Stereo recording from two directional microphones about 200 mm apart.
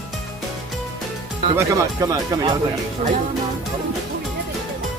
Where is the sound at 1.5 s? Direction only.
15° right (ahead or behind).